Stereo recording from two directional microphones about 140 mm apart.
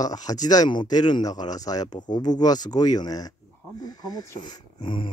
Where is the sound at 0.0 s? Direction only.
25° left (ahead or behind).